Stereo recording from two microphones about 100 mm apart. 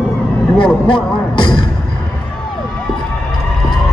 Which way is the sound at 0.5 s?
55° left (ahead or behind).